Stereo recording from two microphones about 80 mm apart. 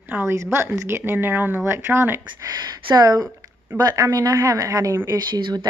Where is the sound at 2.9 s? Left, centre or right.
Right.